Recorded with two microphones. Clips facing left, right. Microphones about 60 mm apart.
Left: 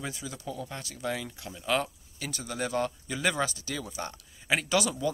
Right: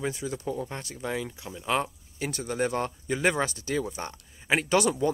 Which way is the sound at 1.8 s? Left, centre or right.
Right.